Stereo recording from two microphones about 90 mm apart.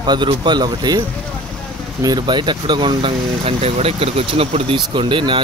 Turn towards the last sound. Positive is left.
turn(degrees=-65)  # may be behind; listen again after turning